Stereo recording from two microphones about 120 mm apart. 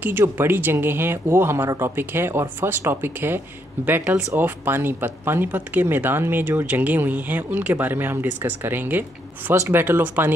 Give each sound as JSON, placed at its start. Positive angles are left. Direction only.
{"t": 0.0, "sound": "speech", "side_deg": -15}